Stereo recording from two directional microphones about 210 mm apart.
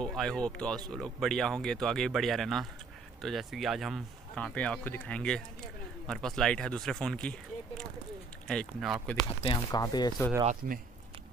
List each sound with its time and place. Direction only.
0.0 s speech: centre (ahead or behind)
9.4 s speech: 20° left (ahead or behind)
10.4 s speech: 35° right (ahead or behind)